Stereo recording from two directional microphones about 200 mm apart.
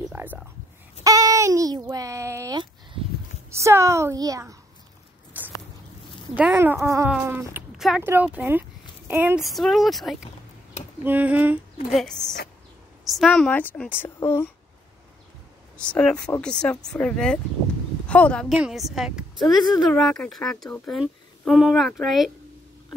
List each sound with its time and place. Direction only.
0.1 s speech: 10° right (ahead or behind)
5.4 s biting: 10° right (ahead or behind)
6.3 s speech: 10° right (ahead or behind); by 14.5 s 10° left (ahead or behind)
15.8 s a woman's voice: 5° left (ahead or behind)